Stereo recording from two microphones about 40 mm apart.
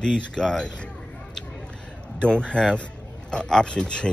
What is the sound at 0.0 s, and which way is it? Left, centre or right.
Speech, centre.